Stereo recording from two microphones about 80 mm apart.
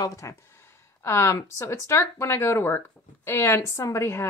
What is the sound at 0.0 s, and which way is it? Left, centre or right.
Speech, left.